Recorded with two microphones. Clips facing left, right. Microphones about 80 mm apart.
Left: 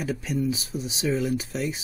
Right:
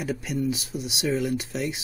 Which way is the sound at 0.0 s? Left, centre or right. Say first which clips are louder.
Even; centre.